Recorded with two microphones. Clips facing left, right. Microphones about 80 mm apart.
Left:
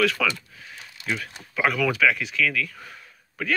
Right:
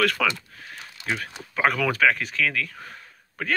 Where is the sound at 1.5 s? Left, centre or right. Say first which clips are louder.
Even; right.